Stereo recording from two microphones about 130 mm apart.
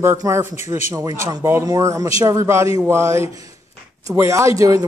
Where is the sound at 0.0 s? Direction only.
20° right (ahead or behind).